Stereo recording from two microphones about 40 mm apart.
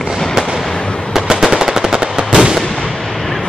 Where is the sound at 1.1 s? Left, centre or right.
Centre.